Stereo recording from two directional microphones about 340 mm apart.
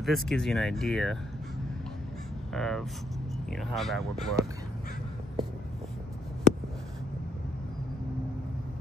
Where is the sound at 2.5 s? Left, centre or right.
Centre.